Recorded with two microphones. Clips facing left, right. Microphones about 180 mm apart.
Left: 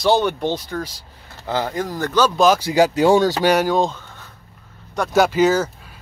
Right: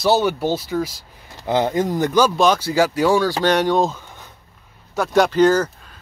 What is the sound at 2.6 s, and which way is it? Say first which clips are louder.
Speech: left 2 dB; 20° left (ahead or behind).